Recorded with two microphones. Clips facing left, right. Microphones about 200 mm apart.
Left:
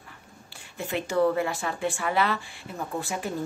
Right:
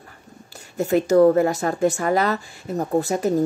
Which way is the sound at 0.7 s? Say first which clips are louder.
Right 10 dB; 40° right (ahead or behind).